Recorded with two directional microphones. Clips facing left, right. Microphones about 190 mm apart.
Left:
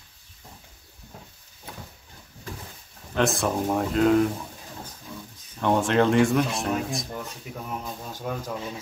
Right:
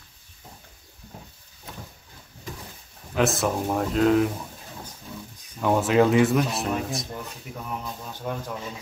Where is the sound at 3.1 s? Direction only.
5° right (ahead or behind).